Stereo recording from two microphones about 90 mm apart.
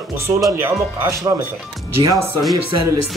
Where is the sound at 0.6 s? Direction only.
30° right (ahead or behind).